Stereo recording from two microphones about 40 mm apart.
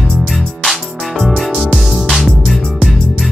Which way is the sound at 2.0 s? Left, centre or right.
Centre.